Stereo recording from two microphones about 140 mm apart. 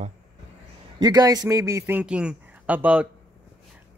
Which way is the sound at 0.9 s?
30° right (ahead or behind).